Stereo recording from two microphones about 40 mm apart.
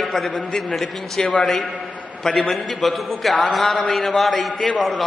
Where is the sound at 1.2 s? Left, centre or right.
Left.